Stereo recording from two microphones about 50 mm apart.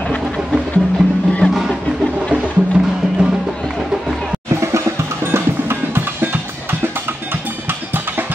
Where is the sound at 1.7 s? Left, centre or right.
Centre.